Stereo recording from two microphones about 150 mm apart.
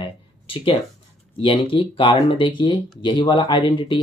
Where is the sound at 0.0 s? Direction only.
35° left (ahead or behind).